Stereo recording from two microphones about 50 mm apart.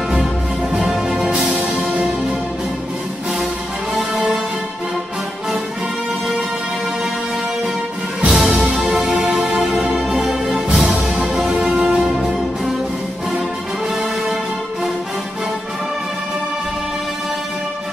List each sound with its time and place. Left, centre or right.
0.8 s music: centre
8.3 s music: centre